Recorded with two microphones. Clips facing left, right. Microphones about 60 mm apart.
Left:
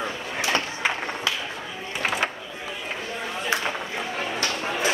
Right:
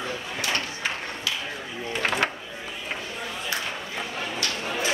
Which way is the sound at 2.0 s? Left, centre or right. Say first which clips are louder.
Even; centre.